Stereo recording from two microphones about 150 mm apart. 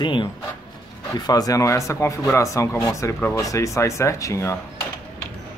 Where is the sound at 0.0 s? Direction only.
30° left (ahead or behind).